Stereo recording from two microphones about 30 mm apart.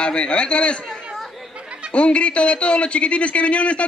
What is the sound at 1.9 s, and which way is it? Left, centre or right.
A man's voice, left.